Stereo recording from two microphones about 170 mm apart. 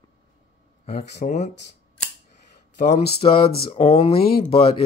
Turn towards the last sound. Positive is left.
turn(degrees=35)  # may be behind; listen again after turning